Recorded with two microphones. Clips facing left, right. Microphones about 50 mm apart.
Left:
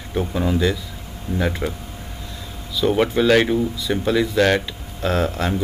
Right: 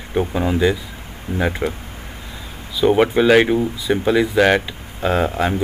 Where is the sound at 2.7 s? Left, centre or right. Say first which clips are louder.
Right 4 dB; centre.